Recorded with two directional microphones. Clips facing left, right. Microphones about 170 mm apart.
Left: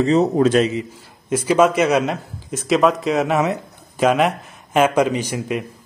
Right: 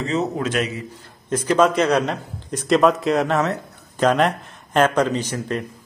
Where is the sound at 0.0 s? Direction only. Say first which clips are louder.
Left 8 dB; 35° left (ahead or behind).